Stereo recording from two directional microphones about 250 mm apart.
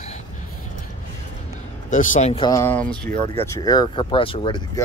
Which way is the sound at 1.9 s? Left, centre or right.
Left.